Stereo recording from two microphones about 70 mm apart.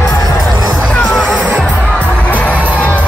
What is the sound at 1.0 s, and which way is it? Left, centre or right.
Music, centre.